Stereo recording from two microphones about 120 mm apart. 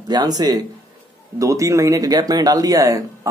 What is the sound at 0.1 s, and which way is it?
Speech, 35° right (ahead or behind).